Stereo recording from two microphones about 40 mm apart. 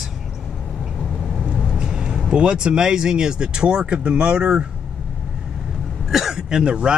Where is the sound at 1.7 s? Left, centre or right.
Centre.